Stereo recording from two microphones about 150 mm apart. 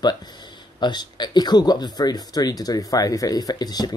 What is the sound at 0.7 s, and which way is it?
Speech, 30° left (ahead or behind).